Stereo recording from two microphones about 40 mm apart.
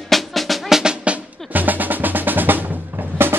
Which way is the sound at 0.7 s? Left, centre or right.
Centre.